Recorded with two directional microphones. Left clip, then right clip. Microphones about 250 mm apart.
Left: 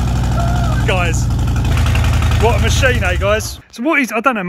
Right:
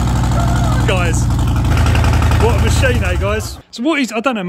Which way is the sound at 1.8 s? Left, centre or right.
Centre.